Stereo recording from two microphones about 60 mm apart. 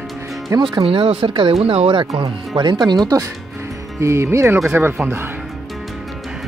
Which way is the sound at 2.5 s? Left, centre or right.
Right.